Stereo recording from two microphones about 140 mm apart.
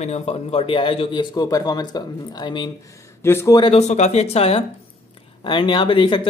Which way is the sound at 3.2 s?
15° left (ahead or behind).